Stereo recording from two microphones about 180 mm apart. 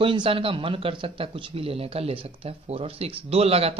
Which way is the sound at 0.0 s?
30° right (ahead or behind).